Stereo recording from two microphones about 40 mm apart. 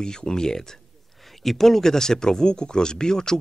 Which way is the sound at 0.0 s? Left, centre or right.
Centre.